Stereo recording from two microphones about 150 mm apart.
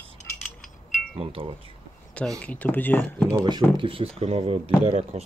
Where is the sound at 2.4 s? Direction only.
10° left (ahead or behind).